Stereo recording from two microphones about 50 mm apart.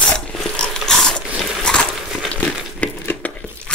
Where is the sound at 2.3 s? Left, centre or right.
Left.